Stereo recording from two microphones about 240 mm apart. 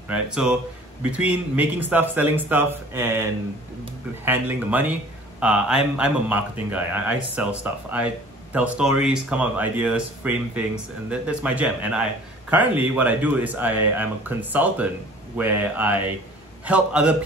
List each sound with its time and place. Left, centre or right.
0.1 s a man's voice: centre